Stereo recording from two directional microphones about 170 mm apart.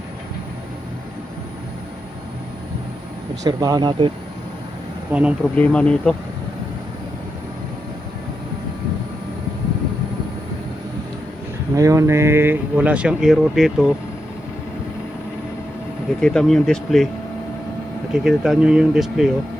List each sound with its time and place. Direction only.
3.4 s speech: 25° right (ahead or behind)
5.1 s speech: 10° right (ahead or behind)
5.6 s speech: 5° left (ahead or behind)
11.7 s speech: 20° right (ahead or behind); by 13.9 s centre (ahead or behind)
16.2 s speech: 5° left (ahead or behind)
18.1 s speech: 5° right (ahead or behind)